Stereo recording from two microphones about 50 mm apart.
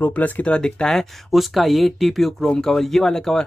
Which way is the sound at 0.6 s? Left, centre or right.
Centre.